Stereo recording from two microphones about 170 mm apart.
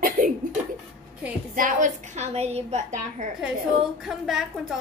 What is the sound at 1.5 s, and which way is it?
A woman's voice, 50° right (ahead or behind).